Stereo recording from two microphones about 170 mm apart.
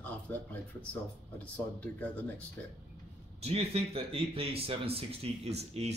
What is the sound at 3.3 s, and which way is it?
A man's voice, 35° right (ahead or behind).